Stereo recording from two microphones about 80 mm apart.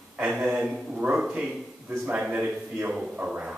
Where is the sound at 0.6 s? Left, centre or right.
Centre.